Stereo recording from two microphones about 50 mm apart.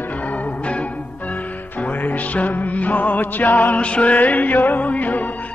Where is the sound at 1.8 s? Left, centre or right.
Left.